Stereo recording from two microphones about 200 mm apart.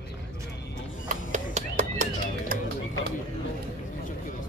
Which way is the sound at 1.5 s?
35° right (ahead or behind).